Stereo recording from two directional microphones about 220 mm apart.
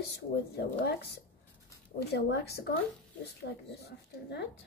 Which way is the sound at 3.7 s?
50° left (ahead or behind).